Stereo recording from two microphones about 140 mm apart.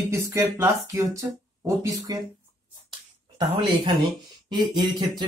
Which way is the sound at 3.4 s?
30° right (ahead or behind).